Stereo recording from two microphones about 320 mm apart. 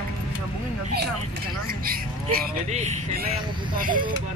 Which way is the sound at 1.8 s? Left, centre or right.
Right.